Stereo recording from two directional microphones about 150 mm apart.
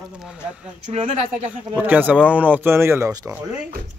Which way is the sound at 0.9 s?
45° right (ahead or behind).